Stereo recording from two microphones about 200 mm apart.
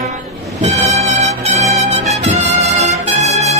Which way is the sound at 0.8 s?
35° right (ahead or behind).